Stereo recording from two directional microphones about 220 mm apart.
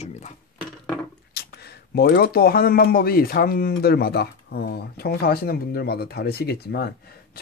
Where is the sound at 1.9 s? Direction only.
45° left (ahead or behind).